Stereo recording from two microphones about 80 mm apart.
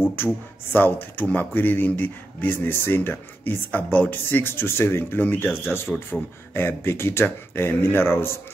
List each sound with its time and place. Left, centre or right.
0.2 s speech: left